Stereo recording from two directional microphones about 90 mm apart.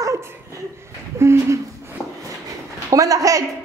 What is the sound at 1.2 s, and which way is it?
Speech, 30° right (ahead or behind).